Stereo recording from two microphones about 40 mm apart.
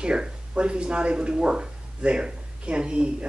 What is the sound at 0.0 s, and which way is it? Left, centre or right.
Speech, right.